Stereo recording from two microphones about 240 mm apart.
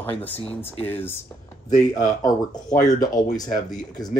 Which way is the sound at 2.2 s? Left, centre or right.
Centre.